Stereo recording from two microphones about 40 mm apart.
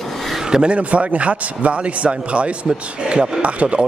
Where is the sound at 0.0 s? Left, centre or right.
Centre.